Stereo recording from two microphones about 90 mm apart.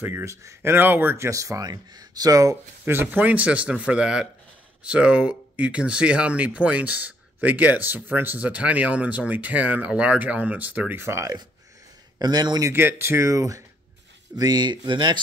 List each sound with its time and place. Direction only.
0.0 s speech: 30° right (ahead or behind); by 2.5 s 45° right (ahead or behind)
2.8 s speech: 25° right (ahead or behind)
12.2 s speech: 50° right (ahead or behind)
12.7 s speech: 25° right (ahead or behind)
14.3 s speech: 50° right (ahead or behind)